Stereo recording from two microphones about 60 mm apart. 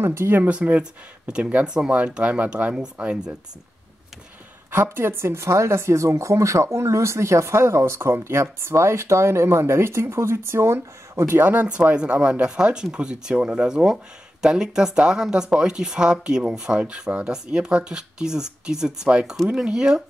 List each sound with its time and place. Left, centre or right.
0.0 s a woman's voice: right
0.4 s speech: right
4.6 s a woman's voice: right
11.9 s speech: centre